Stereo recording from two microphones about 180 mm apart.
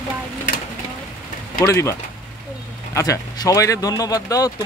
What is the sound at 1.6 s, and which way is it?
Speech, 15° left (ahead or behind).